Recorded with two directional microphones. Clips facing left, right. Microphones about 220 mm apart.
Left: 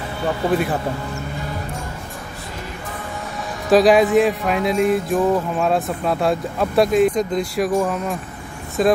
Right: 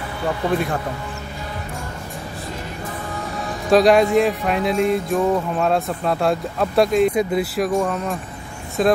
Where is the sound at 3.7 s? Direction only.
Centre (ahead or behind).